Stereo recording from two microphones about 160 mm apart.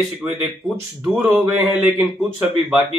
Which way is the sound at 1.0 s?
10° right (ahead or behind).